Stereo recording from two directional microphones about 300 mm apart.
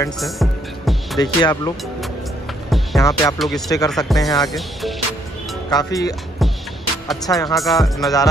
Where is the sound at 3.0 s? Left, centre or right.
Centre.